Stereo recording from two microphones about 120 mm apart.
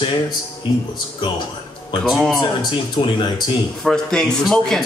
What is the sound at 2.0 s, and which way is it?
Speech, centre (ahead or behind).